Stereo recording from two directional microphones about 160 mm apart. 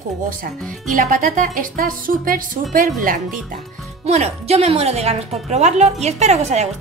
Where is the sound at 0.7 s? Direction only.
55° right (ahead or behind).